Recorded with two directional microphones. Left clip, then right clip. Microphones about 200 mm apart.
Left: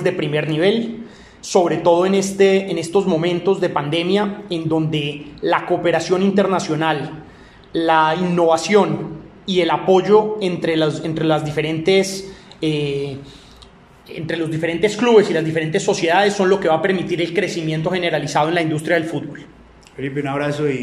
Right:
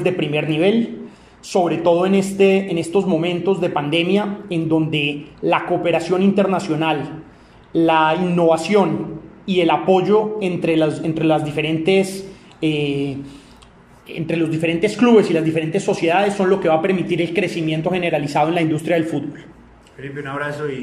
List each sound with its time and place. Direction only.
0.0 s speech: 5° right (ahead or behind)
20.0 s a man's voice: 30° left (ahead or behind)